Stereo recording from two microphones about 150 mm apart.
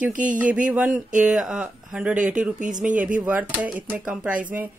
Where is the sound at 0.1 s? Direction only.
60° right (ahead or behind).